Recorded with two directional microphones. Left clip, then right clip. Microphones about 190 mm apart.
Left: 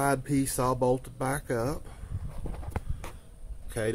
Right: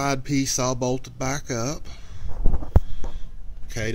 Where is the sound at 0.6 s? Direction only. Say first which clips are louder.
Right 1 dB; 20° right (ahead or behind).